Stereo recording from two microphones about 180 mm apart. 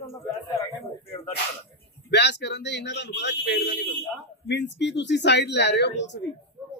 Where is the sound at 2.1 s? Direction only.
70° left (ahead or behind).